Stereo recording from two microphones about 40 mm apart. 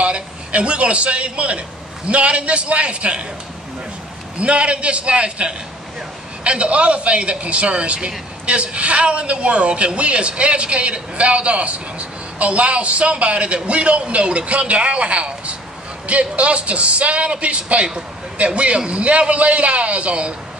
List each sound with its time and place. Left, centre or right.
0.0 s a man's voice: right
4.4 s a woman's voice: right